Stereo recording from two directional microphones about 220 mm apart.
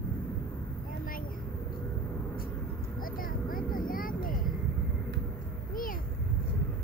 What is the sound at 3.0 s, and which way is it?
Vehicle, 40° left (ahead or behind).